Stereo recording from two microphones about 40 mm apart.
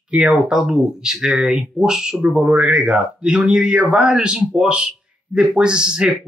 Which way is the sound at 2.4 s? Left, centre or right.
Right.